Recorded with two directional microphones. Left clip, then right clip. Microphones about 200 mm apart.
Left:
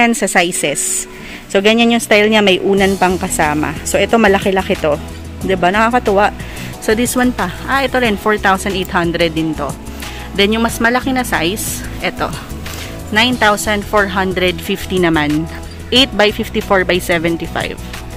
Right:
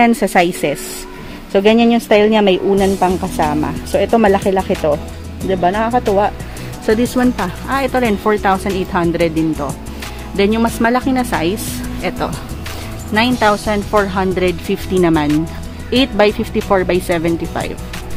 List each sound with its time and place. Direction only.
0.0 s speech: centre (ahead or behind); by 6.0 s 20° left (ahead or behind)
6.9 s speech: 5° left (ahead or behind)